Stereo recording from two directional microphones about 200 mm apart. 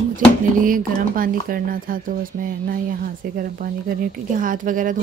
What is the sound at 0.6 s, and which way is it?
Speech, 45° right (ahead or behind).